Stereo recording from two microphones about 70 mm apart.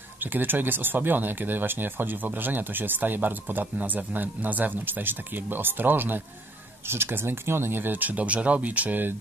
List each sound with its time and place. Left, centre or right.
0.2 s speech: right